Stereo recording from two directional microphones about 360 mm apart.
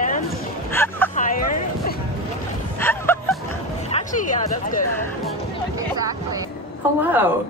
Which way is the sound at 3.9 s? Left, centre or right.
Centre.